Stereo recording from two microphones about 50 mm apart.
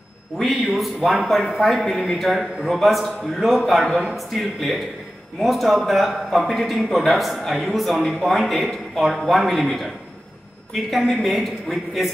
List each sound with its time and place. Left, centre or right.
0.7 s a man's voice: centre